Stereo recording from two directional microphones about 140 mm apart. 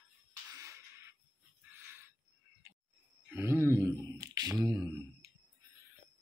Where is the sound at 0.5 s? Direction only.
20° right (ahead or behind).